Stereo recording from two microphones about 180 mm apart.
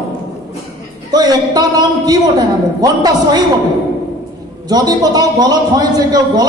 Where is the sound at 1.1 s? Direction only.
20° right (ahead or behind).